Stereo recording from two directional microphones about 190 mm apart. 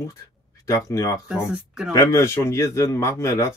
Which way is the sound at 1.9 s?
15° left (ahead or behind).